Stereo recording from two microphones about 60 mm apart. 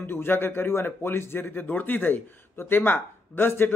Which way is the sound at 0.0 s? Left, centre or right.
Left.